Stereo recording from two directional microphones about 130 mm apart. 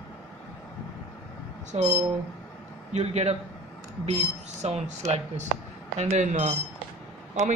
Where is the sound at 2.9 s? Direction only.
60° right (ahead or behind).